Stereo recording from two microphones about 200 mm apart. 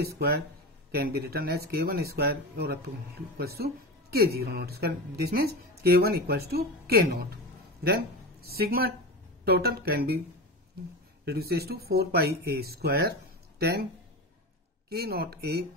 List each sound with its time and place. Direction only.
0.0 s speech: 55° right (ahead or behind)
8.5 s speech: 50° right (ahead or behind)
11.2 s speech: 50° right (ahead or behind)
14.9 s speech: 50° right (ahead or behind)